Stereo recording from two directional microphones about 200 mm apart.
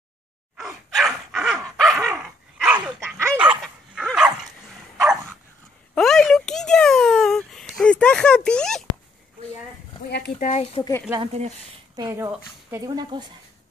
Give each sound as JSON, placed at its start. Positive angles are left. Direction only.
{"t": 0.6, "sound": "dog", "side_deg": 0}
{"t": 5.9, "sound": "a sound", "side_deg": 0}
{"t": 10.0, "sound": "a sound", "side_deg": 55}
{"t": 10.5, "sound": "speech", "side_deg": 30}
{"t": 10.8, "sound": "speech", "side_deg": 15}
{"t": 11.1, "sound": "speech", "side_deg": -35}
{"t": 12.0, "sound": "a woman's voice", "side_deg": -15}
{"t": 12.8, "sound": "speech", "side_deg": -20}